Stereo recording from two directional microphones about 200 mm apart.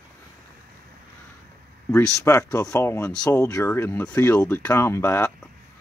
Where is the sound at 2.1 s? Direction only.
15° left (ahead or behind).